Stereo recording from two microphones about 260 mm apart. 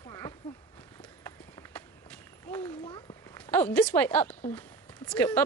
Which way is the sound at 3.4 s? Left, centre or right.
Centre.